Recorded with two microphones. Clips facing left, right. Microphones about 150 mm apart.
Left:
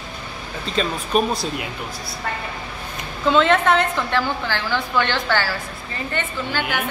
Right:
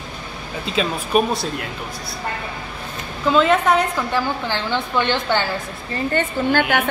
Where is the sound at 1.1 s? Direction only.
5° right (ahead or behind).